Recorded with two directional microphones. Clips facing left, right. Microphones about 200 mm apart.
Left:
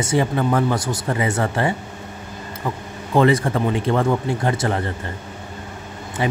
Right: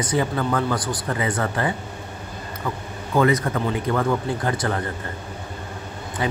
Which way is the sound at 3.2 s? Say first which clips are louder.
Left 3 dB; 25° left (ahead or behind).